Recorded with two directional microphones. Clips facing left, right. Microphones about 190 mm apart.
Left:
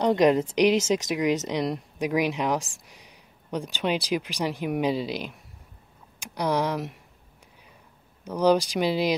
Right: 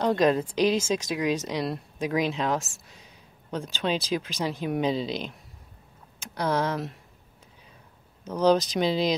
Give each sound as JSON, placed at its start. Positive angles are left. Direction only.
{"t": 0.0, "sound": "speech", "side_deg": 15}
{"t": 8.2, "sound": "speech", "side_deg": 10}